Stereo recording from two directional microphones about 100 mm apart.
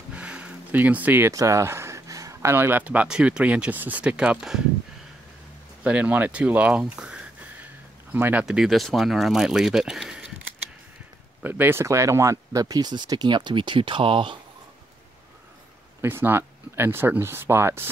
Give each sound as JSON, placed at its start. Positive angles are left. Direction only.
{"t": 0.1, "sound": "a sound", "side_deg": -10}
{"t": 1.3, "sound": "a sound", "side_deg": -30}
{"t": 2.5, "sound": "speech", "side_deg": -20}
{"t": 5.9, "sound": "speech", "side_deg": -15}
{"t": 8.5, "sound": "speech", "side_deg": -5}
{"t": 11.4, "sound": "speech", "side_deg": -20}
{"t": 16.0, "sound": "speech", "side_deg": -25}